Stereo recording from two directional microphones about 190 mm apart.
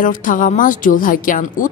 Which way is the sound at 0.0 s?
45° left (ahead or behind).